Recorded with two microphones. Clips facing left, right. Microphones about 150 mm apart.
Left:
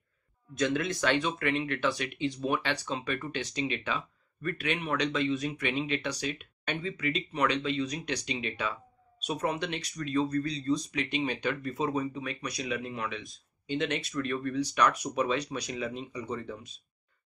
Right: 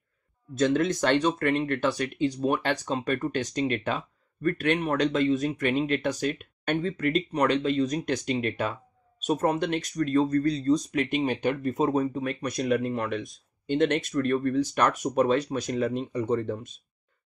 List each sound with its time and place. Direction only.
0.6 s speech: 45° right (ahead or behind)